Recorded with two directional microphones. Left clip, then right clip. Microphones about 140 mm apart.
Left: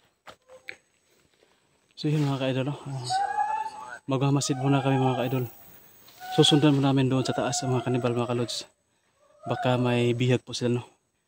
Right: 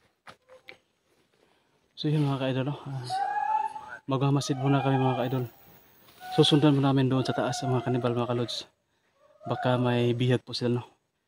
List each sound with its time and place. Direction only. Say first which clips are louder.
0.2 s a sound: left 2 dB; 10° left (ahead or behind)
2.0 s speech: left 1 dB; 5° left (ahead or behind)
3.0 s speech: left 4 dB; 35° left (ahead or behind)
4.1 s a man's voice: left 1 dB; 10° left (ahead or behind)